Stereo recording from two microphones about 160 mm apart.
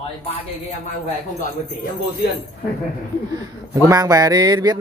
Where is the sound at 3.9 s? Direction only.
20° right (ahead or behind).